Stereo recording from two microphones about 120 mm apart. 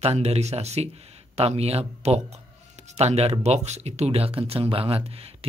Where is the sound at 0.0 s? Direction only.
60° right (ahead or behind).